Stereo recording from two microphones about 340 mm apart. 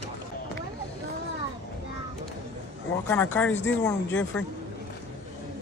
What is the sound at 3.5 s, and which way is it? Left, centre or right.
Speech, left.